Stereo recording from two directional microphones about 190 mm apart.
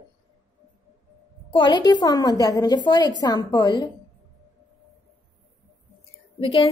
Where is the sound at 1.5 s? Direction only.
25° left (ahead or behind).